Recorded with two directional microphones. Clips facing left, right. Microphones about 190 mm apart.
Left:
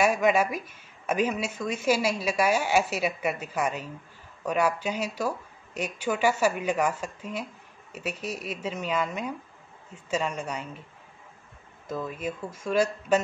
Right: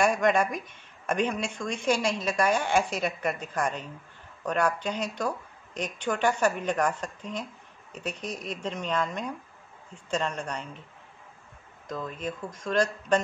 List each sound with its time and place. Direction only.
0.0 s speech: 5° left (ahead or behind)
11.9 s speech: 5° left (ahead or behind)